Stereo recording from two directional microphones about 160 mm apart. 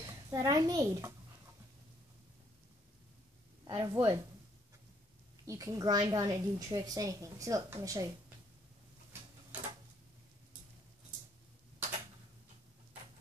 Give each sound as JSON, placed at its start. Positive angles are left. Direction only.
{"t": 0.0, "sound": "a child's voice", "side_deg": -20}
{"t": 3.6, "sound": "speech", "side_deg": -25}
{"t": 5.5, "sound": "a woman's voice", "side_deg": -20}